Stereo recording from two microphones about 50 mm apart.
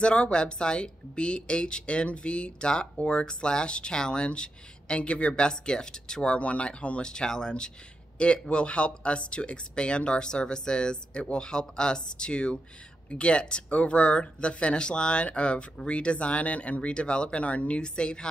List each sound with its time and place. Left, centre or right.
0.0 s speech: left